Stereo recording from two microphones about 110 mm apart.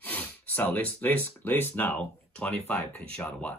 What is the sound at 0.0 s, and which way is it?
A man's voice, 15° left (ahead or behind).